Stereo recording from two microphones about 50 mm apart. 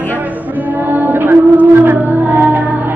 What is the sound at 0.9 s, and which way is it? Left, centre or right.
Music, right.